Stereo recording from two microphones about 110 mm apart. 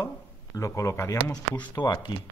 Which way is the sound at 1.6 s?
45° left (ahead or behind).